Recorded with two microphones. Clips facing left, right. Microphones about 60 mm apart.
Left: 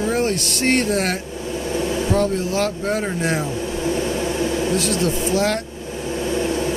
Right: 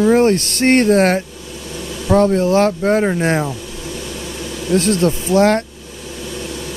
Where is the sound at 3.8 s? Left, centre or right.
Left.